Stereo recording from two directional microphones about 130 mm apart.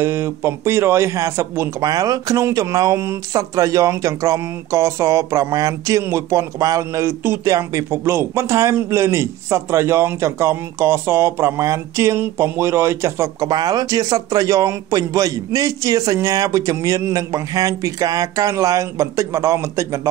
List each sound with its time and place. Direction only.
0.0 s a man's voice: 20° right (ahead or behind)